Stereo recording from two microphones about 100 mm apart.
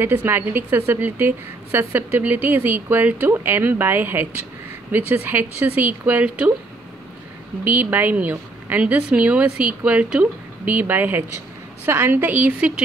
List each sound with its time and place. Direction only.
0.0 s a woman's voice: 20° right (ahead or behind)
7.6 s a woman's voice: 15° right (ahead or behind)